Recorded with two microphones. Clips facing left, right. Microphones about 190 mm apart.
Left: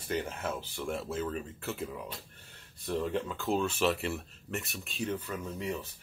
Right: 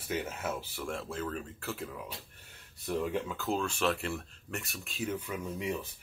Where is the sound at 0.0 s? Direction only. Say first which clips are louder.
Left 1 dB; 5° right (ahead or behind).